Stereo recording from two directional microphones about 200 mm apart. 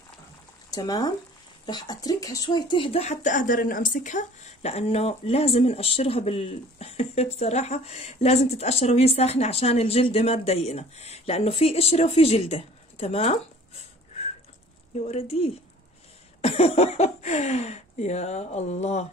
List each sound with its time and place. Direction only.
0.7 s speech: 20° left (ahead or behind)
15.0 s a woman's voice: 30° left (ahead or behind)